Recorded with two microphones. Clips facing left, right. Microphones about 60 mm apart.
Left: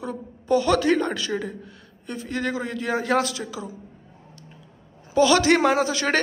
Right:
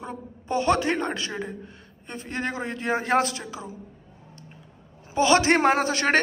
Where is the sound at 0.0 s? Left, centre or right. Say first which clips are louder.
Left 4 dB; right.